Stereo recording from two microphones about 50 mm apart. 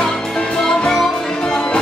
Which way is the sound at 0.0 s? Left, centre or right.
Centre.